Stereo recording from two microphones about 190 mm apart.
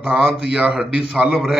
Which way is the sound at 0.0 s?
5° right (ahead or behind).